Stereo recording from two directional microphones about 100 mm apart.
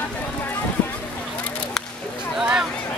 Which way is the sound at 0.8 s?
15° left (ahead or behind).